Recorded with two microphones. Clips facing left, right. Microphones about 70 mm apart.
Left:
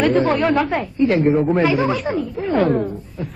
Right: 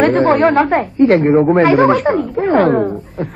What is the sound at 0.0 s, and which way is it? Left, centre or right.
A woman's voice, right.